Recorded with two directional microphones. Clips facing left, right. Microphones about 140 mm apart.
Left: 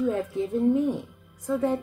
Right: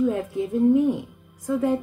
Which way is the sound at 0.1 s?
10° right (ahead or behind).